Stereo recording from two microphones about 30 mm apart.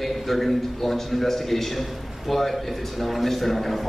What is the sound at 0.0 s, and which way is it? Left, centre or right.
A man's voice, centre.